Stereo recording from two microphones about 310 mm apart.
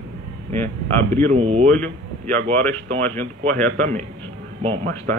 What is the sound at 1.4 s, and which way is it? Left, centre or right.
Speech, centre.